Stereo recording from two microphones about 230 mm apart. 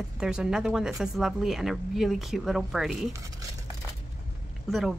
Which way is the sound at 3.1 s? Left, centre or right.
Centre.